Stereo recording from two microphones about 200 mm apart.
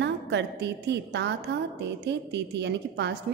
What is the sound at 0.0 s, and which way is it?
A woman's voice, 60° right (ahead or behind).